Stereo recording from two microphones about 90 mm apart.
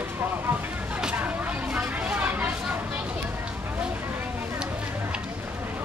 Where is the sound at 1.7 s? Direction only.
20° right (ahead or behind).